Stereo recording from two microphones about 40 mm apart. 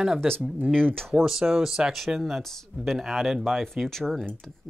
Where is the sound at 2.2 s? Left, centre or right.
Centre.